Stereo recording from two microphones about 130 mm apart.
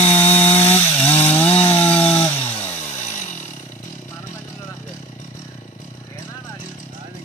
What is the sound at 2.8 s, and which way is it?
Chainsaw, 65° left (ahead or behind).